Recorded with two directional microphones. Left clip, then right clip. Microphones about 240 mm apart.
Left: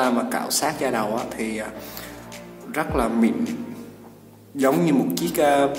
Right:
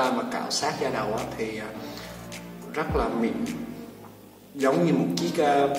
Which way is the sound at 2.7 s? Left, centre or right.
Left.